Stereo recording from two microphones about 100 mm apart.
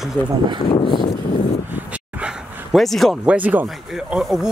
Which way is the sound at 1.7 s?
10° right (ahead or behind).